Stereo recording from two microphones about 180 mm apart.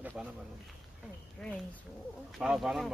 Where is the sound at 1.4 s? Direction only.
Centre (ahead or behind).